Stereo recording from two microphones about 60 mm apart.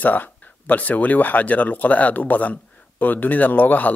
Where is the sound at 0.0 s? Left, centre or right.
Left.